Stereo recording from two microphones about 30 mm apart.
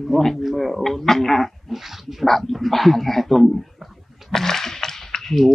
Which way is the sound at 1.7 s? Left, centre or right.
Centre.